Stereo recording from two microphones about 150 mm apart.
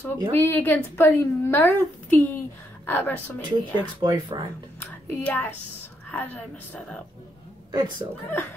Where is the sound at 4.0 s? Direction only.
25° right (ahead or behind).